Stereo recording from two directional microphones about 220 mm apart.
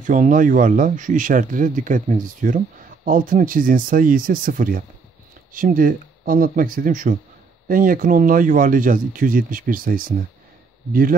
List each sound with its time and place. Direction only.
0.0 s speech: 35° right (ahead or behind)